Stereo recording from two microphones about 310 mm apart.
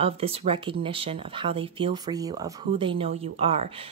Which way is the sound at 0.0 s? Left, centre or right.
Centre.